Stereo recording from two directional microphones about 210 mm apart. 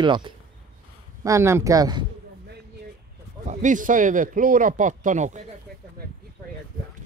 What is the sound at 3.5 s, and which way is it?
Speech, 35° right (ahead or behind).